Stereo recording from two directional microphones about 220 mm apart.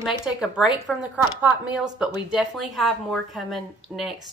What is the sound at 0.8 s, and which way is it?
Speech, 5° right (ahead or behind).